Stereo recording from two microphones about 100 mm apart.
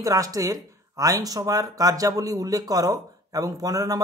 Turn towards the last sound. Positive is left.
turn(degrees=-40)  # may be behind; listen again after turning